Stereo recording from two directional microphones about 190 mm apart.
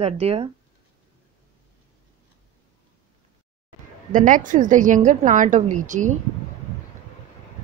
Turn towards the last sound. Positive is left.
turn(degrees=-40)  # may be behind; listen again after turning